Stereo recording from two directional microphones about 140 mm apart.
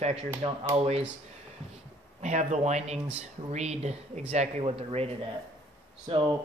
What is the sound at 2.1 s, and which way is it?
Speech, 55° right (ahead or behind).